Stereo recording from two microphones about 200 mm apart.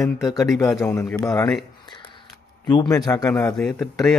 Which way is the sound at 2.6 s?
20° left (ahead or behind).